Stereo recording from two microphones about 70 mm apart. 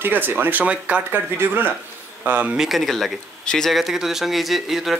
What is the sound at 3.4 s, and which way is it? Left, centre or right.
Speech, centre.